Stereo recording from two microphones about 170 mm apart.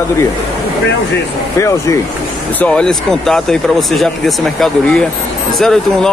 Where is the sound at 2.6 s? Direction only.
5° left (ahead or behind).